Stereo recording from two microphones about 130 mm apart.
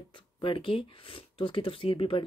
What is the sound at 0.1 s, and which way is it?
Speech, 40° left (ahead or behind).